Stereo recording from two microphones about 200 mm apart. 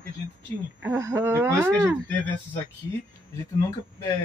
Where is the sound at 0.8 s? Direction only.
10° right (ahead or behind).